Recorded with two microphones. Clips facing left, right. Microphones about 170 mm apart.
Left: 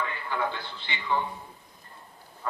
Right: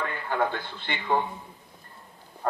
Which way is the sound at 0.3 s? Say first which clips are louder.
Right 6 dB; 50° right (ahead or behind).